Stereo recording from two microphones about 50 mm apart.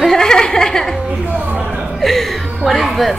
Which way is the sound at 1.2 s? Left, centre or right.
Right.